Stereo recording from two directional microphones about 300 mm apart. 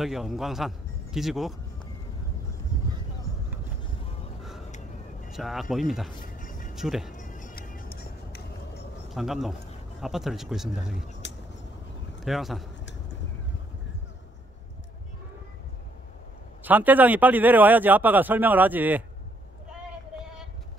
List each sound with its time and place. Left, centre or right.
0.0 s a man's voice: centre
4.4 s a sound: centre
4.6 s vehicle: left
5.3 s a man's voice: centre
6.3 s music: left
6.7 s speech: centre
7.2 s music: left
9.1 s a man's voice: centre
12.2 s speech: centre
16.6 s a man's voice: centre